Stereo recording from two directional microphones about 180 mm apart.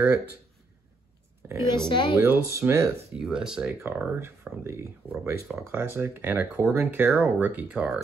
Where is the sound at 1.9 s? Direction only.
25° left (ahead or behind).